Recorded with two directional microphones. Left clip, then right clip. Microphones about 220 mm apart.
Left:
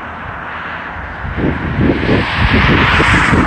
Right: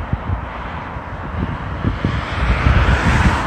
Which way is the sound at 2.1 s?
55° right (ahead or behind).